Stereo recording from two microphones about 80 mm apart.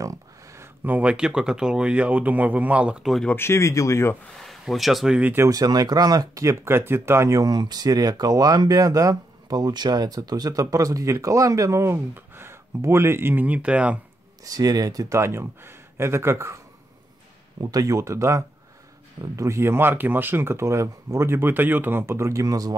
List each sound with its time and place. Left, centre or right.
0.0 s a sound: right
0.8 s speech: centre
3.0 s speech: centre
3.3 s speech: left
4.4 s speech: centre
5.5 s speech: right
7.3 s speech: right; by 13.9 s centre
14.4 s speech: right
15.1 s speech: right
17.6 s speech: right